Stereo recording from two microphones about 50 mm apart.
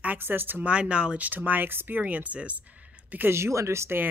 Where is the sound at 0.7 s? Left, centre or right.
Right.